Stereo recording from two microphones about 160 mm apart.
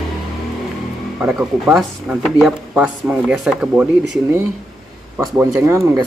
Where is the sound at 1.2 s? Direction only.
10° right (ahead or behind).